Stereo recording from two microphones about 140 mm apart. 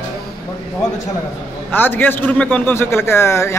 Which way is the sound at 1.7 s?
15° left (ahead or behind).